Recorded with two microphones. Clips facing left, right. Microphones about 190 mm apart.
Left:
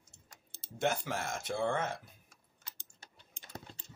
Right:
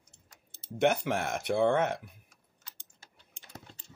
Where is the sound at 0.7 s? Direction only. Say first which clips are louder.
Right 7 dB; 65° right (ahead or behind).